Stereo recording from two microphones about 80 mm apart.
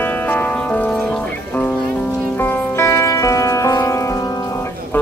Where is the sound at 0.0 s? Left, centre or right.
Left.